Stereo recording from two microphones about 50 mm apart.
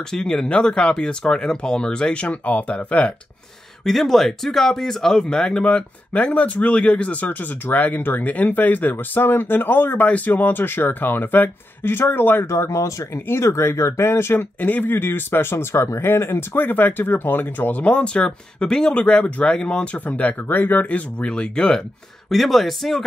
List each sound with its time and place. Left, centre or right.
0.1 s speech: centre
2.2 s speech: left
3.8 s speech: centre; by 10.0 s left
10.0 s speech: left
10.3 s speech: left
12.4 s speech: left
14.6 s speech: left
15.5 s speech: left
20.9 s speech: left
22.3 s speech: centre